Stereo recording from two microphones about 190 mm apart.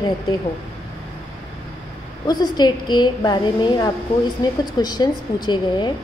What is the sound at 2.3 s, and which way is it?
A woman's voice, 20° left (ahead or behind).